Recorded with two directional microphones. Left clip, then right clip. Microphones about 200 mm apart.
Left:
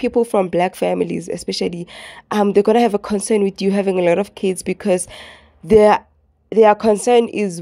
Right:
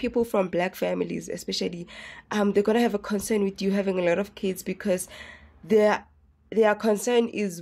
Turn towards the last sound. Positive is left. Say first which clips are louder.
# left 10 dB
turn(degrees=30)  # may be behind; listen again after turning